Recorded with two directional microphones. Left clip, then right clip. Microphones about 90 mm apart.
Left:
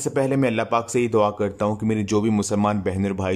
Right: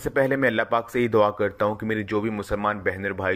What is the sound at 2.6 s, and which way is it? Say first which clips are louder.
Speech: left 1 dB; 30° left (ahead or behind).